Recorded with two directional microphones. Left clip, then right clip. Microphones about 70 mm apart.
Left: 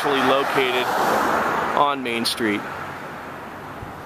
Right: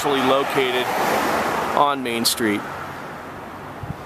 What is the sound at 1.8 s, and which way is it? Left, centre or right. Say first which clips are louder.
Speech: right 3 dB; right.